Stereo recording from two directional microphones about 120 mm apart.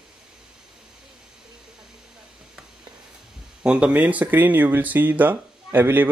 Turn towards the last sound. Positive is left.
turn(degrees=-15)  # may be behind; listen again after turning